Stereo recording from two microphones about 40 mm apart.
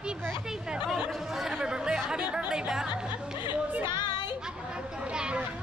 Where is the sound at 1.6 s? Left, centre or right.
Centre.